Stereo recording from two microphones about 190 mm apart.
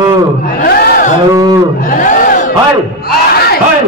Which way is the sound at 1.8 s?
45° left (ahead or behind).